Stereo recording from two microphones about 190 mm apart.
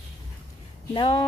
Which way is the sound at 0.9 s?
25° left (ahead or behind).